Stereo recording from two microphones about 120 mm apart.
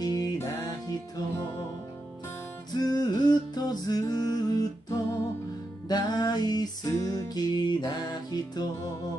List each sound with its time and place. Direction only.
0.0 s music: 30° left (ahead or behind)
2.7 s music: 35° left (ahead or behind)